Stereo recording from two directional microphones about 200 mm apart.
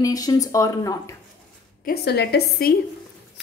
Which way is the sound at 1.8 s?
55° left (ahead or behind).